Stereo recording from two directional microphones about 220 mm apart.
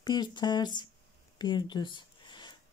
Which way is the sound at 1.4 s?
20° left (ahead or behind).